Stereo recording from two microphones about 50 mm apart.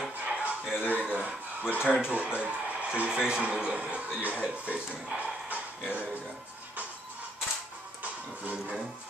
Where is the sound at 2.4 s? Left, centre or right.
Right.